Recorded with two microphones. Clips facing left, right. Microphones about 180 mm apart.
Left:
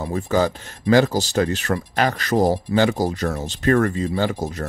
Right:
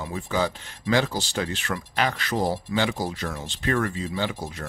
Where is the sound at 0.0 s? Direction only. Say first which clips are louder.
Left 6 dB; 45° left (ahead or behind).